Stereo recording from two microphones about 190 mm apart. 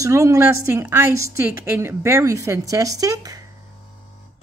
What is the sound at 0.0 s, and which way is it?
Speech, 15° right (ahead or behind).